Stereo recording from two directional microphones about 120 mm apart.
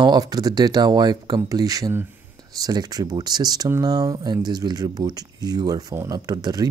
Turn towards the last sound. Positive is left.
turn(degrees=-30)  # may be behind; listen again after turning